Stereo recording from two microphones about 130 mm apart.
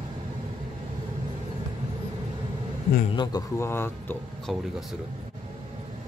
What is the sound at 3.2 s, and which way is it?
Speech, 30° left (ahead or behind).